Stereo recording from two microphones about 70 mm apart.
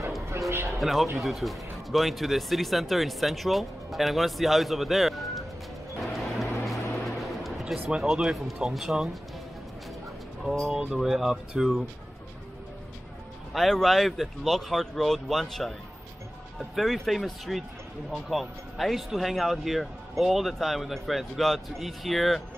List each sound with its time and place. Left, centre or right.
0.5 s music: right
0.7 s speech: centre
5.9 s music: centre
7.9 s speech: centre
10.7 s speech: centre
13.5 s speech: centre